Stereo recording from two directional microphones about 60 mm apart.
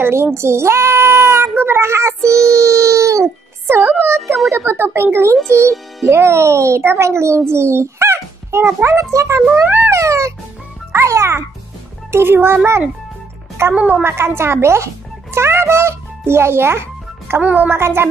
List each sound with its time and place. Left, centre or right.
0.0 s a child's voice: right
2.2 s child singing: centre
2.5 s music: right
4.0 s a child's voice: right
9.1 s a child's voice: right
9.6 s speech: right
9.8 s music: right
10.9 s a child's voice: right
15.3 s music: right
17.6 s a child's voice: right